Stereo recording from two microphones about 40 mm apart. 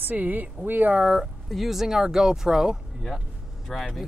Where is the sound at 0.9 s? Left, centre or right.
Centre.